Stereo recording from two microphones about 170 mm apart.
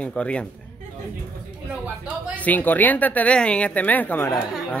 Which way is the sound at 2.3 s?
10° left (ahead or behind).